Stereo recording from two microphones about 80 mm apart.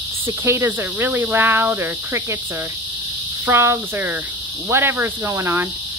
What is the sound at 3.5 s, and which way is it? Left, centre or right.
Speech, right.